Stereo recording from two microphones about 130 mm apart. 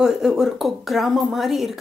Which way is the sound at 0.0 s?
5° right (ahead or behind).